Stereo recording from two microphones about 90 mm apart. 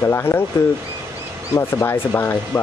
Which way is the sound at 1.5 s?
25° left (ahead or behind).